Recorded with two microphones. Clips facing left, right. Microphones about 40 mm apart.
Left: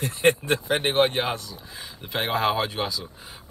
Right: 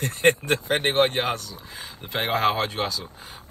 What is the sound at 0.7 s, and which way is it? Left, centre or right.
Speech, right.